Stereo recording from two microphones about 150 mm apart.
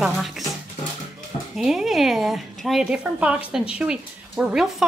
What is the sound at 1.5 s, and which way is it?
A woman's voice, centre (ahead or behind).